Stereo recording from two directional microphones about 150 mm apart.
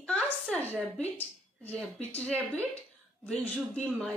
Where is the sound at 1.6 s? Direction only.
10° left (ahead or behind).